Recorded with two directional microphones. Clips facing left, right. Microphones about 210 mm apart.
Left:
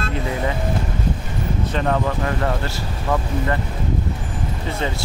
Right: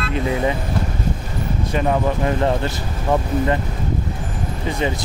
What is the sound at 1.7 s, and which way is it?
Speech, 20° right (ahead or behind).